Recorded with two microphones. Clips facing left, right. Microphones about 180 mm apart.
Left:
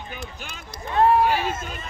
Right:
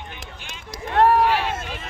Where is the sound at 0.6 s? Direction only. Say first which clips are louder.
Right 2 dB; 85° right.